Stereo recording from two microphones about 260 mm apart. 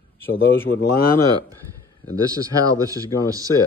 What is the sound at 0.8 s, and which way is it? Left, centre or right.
Speech, left.